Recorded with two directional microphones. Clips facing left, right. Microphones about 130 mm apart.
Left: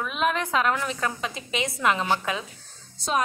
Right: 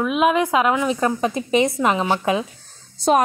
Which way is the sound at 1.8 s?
20° right (ahead or behind).